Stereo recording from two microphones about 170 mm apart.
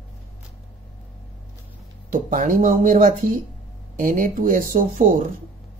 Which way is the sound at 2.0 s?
50° right (ahead or behind).